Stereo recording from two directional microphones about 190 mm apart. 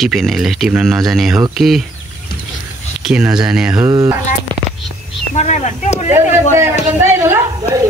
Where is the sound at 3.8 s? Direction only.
15° right (ahead or behind).